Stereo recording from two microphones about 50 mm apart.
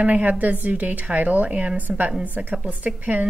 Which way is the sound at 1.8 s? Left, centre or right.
Right.